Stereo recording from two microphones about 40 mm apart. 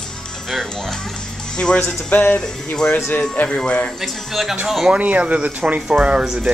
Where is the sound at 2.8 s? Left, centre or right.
Left.